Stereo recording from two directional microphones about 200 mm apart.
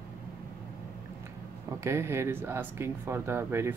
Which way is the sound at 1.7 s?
15° right (ahead or behind).